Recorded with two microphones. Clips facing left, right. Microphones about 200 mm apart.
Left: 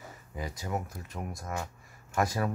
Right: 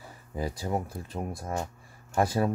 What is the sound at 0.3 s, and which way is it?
Speech, 35° right (ahead or behind).